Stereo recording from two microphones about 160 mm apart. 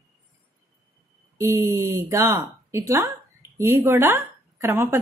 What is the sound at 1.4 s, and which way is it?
A woman's voice, 20° right (ahead or behind).